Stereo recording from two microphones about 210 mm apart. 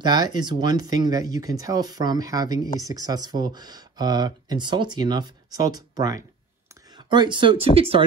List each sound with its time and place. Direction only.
0.0 s speech: 20° right (ahead or behind)